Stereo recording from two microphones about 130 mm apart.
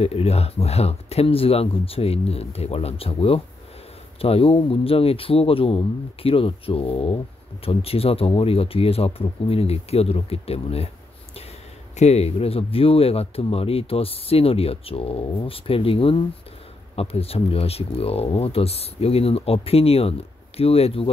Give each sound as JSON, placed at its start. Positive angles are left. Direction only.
{"t": 0.0, "sound": "speech", "side_deg": 50}
{"t": 12.0, "sound": "speech", "side_deg": 55}